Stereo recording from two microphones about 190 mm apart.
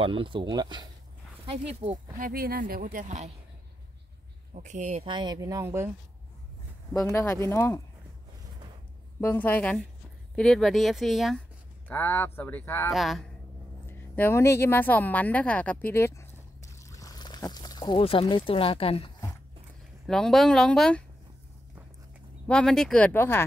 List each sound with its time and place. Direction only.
0.0 s speech: 25° right (ahead or behind)
2.1 s speech: 50° right (ahead or behind)
4.6 s speech: 40° right (ahead or behind)
5.0 s speech: 25° right (ahead or behind)
7.1 s speech: 15° left (ahead or behind)
9.2 s speech: 10° left (ahead or behind)
11.9 s speech: 10° left (ahead or behind)
12.9 s speech: centre (ahead or behind)
13.8 s a woman's voice: 10° left (ahead or behind); by 19.1 s 30° left (ahead or behind)
20.1 s speech: centre (ahead or behind)
22.5 s speech: 5° left (ahead or behind)